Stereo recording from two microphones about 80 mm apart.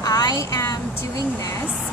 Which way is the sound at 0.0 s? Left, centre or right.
Left.